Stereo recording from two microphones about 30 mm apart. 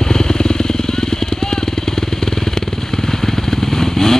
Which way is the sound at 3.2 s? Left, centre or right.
Centre.